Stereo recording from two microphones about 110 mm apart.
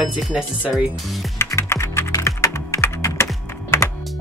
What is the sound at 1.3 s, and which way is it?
Typing, 25° left (ahead or behind).